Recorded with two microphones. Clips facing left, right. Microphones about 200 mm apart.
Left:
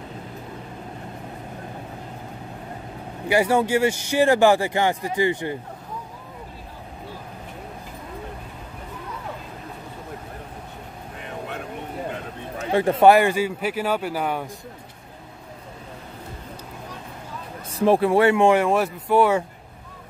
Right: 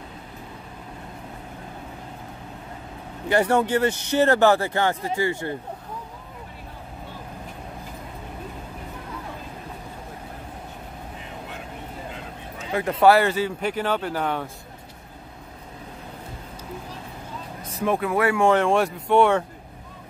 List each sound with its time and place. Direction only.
3.3 s speech: 10° left (ahead or behind)
11.2 s vehicle: 60° left (ahead or behind)
12.1 s a sound: 60° left (ahead or behind)
13.0 s speech: 15° left (ahead or behind)
17.6 s speech: 30° left (ahead or behind)
18.5 s speech: 5° left (ahead or behind)